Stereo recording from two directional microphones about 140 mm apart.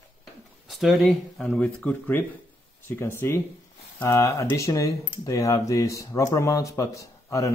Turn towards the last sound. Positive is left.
turn(degrees=20)  # may be behind; listen again after turning